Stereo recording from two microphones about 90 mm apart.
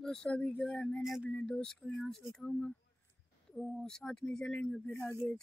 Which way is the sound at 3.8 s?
5° left (ahead or behind).